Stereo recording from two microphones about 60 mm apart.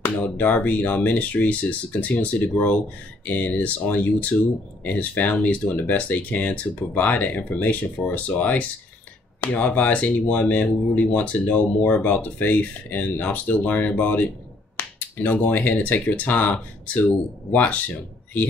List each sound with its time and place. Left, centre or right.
0.0 s speech: left